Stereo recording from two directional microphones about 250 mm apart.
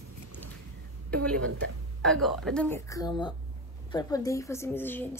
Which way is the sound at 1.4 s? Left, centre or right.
Right.